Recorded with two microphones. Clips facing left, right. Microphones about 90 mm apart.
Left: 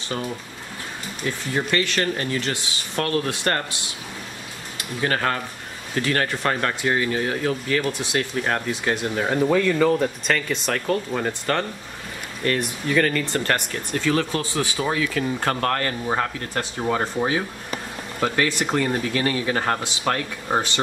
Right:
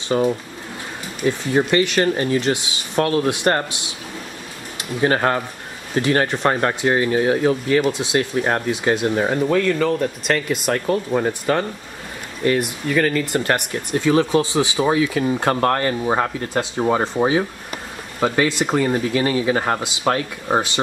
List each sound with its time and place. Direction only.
0.1 s speech: 25° right (ahead or behind)
5.0 s speech: 25° right (ahead or behind)
9.3 s speech: centre (ahead or behind)
10.2 s speech: 10° right (ahead or behind)
12.8 s speech: 5° right (ahead or behind)